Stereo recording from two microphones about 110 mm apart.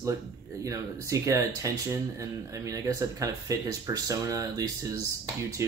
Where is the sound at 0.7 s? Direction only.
30° right (ahead or behind).